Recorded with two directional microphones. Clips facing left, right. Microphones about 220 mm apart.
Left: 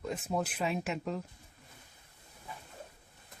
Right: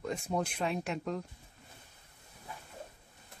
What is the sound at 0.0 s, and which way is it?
Speech, 5° left (ahead or behind).